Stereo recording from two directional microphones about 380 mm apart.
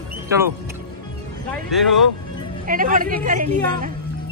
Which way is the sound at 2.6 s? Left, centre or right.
Right.